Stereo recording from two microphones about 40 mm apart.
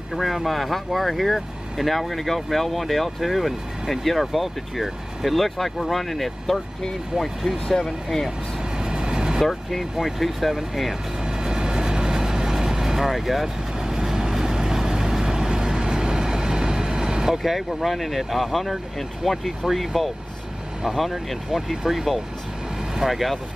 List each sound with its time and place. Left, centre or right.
0.1 s speech: centre
8.7 s vehicle: centre
9.5 s speech: centre
11.2 s vehicle: centre
17.4 s speech: centre